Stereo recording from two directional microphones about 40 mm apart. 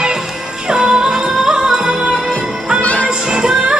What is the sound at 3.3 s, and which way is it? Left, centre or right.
Music, centre.